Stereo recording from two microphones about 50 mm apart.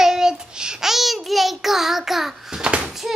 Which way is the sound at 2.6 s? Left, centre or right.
Centre.